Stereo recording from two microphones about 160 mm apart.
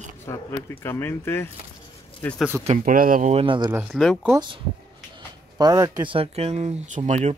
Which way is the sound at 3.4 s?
30° right (ahead or behind).